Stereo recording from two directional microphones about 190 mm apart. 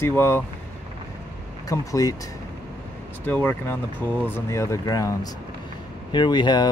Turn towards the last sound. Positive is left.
turn(degrees=20)  # may be behind; listen again after turning